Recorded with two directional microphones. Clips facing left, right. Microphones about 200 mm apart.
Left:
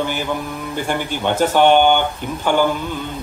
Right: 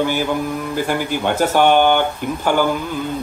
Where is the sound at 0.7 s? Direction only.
5° right (ahead or behind).